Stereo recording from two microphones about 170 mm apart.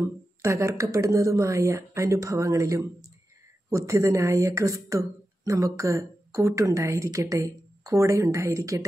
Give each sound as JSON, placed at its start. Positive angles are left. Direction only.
{"t": 0.0, "sound": "speech", "side_deg": -15}